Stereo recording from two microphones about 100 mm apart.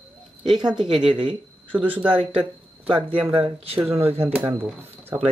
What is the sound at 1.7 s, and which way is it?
Speech, 15° right (ahead or behind).